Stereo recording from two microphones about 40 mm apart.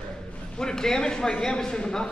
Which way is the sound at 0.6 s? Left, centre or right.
Centre.